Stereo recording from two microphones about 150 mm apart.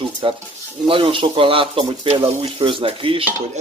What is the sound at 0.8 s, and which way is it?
Speech, 35° right (ahead or behind).